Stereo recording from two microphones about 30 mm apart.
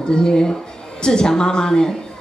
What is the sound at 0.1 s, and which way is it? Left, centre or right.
A woman's voice, left.